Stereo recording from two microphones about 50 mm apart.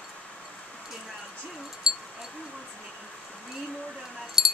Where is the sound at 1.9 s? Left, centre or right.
Centre.